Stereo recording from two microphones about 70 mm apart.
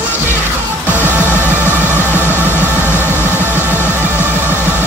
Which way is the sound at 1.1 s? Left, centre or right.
Right.